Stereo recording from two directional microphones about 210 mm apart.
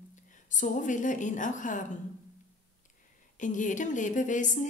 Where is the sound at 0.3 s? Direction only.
35° left (ahead or behind).